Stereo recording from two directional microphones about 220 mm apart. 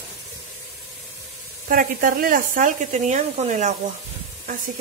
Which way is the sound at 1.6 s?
40° right (ahead or behind).